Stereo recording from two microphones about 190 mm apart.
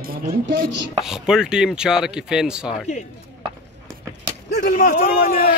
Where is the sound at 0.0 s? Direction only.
50° right (ahead or behind).